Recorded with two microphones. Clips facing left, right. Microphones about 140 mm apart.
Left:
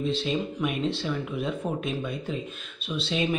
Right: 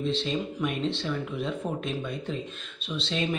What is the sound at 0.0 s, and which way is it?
Speech, 5° left (ahead or behind).